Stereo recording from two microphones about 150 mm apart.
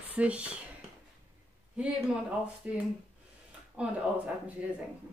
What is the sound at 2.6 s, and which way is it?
Speech, 10° right (ahead or behind).